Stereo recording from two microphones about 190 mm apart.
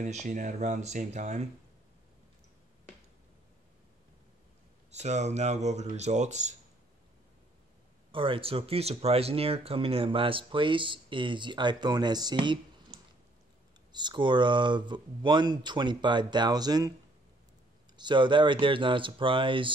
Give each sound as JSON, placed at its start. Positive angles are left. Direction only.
{"t": 0.0, "sound": "speech", "side_deg": -40}
{"t": 4.9, "sound": "speech", "side_deg": -35}
{"t": 8.1, "sound": "speech", "side_deg": -25}
{"t": 13.9, "sound": "speech", "side_deg": -25}
{"t": 17.9, "sound": "speech", "side_deg": -25}